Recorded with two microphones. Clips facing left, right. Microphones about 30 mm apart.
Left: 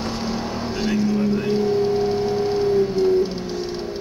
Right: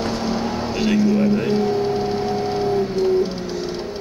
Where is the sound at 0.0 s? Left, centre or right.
Centre.